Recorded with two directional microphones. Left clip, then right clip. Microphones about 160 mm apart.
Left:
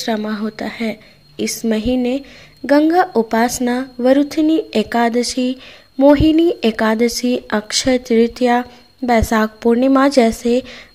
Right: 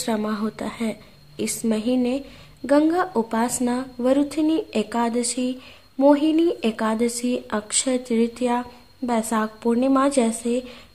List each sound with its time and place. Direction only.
0.0 s a woman's voice: 10° left (ahead or behind); by 10.7 s 25° left (ahead or behind)